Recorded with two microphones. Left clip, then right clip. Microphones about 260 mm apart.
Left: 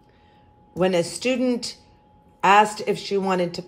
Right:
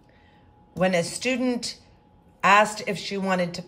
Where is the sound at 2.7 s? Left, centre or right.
Centre.